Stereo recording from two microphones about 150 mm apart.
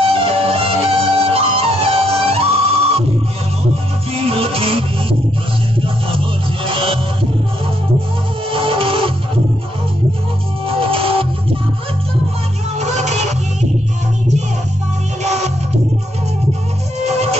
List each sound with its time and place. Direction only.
0.0 s music: 40° right (ahead or behind)
4.2 s music: 40° right (ahead or behind)
6.0 s music: 35° right (ahead or behind)
8.5 s music: 40° right (ahead or behind)
10.7 s music: 40° right (ahead or behind)
12.7 s music: 50° right (ahead or behind)
15.2 s music: 45° right (ahead or behind)
17.0 s music: 45° right (ahead or behind)